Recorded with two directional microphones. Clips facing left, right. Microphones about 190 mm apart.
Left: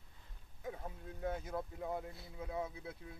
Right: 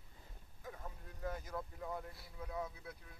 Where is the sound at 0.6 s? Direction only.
25° left (ahead or behind).